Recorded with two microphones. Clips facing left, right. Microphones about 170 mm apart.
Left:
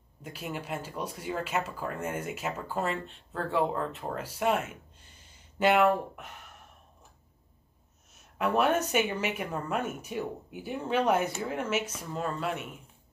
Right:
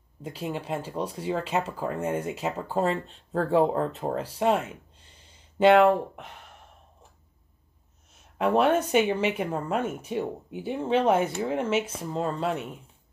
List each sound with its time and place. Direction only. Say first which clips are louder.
0.2 s speech: right 5 dB; 30° right (ahead or behind)
8.4 s speech: right 4 dB; 30° right (ahead or behind)